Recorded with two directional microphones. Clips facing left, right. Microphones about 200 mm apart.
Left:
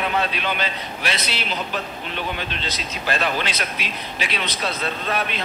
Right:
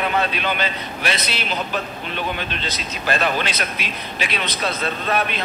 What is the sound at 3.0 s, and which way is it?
A man's voice, 50° right (ahead or behind).